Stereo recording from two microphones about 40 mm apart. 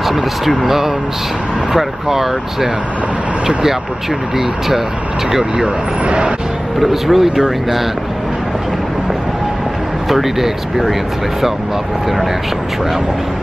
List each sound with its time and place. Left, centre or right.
0.0 s speech: centre
4.4 s speech: centre
6.0 s speech: right
6.8 s speech: centre
10.0 s speech: centre